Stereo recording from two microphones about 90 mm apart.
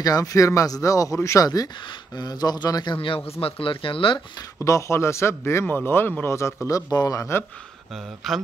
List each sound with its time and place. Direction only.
0.0 s speech: 40° left (ahead or behind); by 3.2 s 70° left (ahead or behind)
3.3 s speech: 90° left
4.6 s a man's voice: 35° left (ahead or behind)
6.9 s speech: 45° left (ahead or behind)
7.9 s speech: centre (ahead or behind)